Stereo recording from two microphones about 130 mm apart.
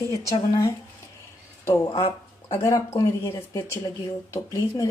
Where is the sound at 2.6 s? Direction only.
25° left (ahead or behind).